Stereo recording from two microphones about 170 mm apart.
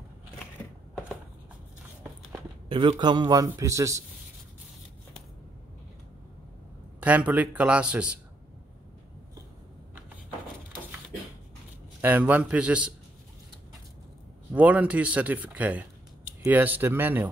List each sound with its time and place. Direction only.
2.7 s a man's voice: 30° right (ahead or behind)
7.0 s speech: 10° right (ahead or behind)
12.0 s speech: 10° right (ahead or behind)
14.5 s speech: 10° right (ahead or behind)